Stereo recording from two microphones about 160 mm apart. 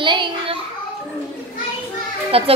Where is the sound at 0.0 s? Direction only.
30° right (ahead or behind).